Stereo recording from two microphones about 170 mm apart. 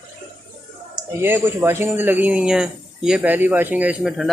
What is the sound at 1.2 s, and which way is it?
Speech, 15° right (ahead or behind).